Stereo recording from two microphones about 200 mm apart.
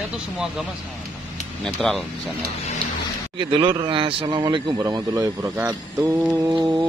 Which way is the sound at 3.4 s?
25° right (ahead or behind).